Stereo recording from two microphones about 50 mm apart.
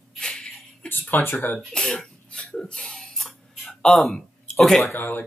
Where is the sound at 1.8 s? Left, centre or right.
Centre.